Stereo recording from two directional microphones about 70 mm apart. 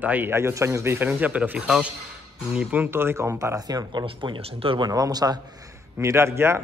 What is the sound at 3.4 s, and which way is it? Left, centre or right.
Speech, right.